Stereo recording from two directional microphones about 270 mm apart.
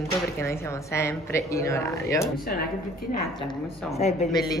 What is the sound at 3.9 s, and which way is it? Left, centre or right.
Speech, left.